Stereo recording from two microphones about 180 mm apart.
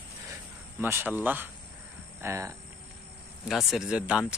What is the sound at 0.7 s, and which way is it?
Speech, 15° right (ahead or behind).